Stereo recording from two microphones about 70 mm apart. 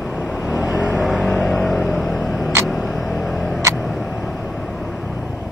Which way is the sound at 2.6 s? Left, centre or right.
Centre.